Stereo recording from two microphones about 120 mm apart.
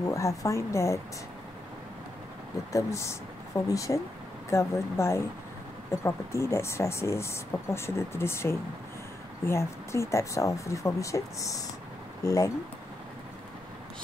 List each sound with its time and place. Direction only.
0.0 s speech: 25° left (ahead or behind)
2.7 s speech: 25° left (ahead or behind)